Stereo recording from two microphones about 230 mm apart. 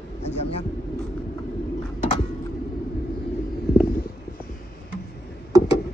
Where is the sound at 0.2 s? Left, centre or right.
Left.